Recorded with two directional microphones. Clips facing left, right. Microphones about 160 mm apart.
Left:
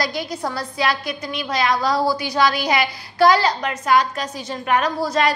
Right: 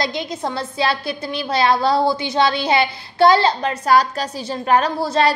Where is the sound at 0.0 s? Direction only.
20° right (ahead or behind).